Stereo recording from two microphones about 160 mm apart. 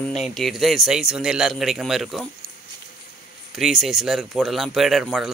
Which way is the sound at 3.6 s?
Centre (ahead or behind).